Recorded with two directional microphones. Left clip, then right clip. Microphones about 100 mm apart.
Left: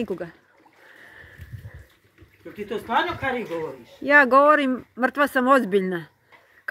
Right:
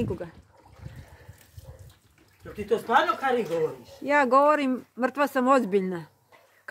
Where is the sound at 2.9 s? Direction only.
40° right (ahead or behind).